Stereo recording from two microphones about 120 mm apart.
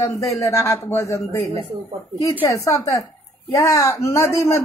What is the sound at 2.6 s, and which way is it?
A woman's voice, 25° left (ahead or behind).